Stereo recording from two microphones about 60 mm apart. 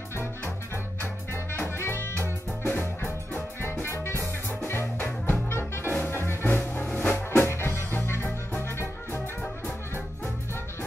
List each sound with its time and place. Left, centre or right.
1.3 s music: left
7.3 s music: left